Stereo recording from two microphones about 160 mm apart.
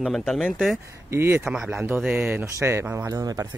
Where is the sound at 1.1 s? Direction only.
15° right (ahead or behind).